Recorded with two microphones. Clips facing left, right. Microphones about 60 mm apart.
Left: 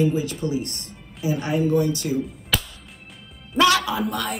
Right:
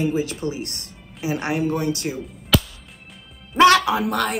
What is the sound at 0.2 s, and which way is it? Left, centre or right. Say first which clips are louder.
Speech: right 2 dB; right.